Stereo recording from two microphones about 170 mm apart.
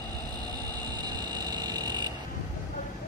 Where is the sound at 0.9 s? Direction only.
25° right (ahead or behind).